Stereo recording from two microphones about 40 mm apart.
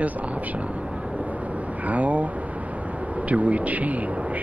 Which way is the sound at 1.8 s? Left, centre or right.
Right.